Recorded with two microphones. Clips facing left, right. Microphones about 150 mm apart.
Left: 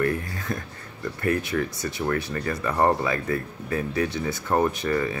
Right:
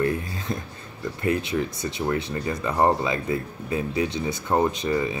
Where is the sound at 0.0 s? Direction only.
20° right (ahead or behind).